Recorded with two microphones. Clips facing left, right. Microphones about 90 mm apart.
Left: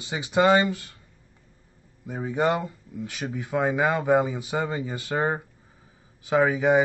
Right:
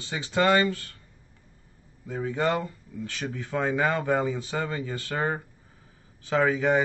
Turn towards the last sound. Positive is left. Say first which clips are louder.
# left 3 dB
turn(degrees=15)  # may be behind; listen again after turning